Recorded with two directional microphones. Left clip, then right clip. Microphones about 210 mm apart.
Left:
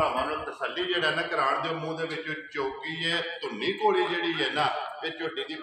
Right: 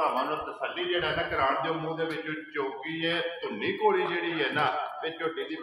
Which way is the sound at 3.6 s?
60° left (ahead or behind).